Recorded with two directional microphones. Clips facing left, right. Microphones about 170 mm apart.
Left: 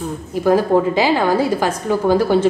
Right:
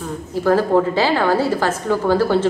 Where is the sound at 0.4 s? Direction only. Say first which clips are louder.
Left 1 dB; 15° left (ahead or behind).